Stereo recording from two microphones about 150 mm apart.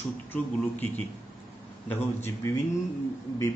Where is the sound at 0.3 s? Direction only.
10° left (ahead or behind).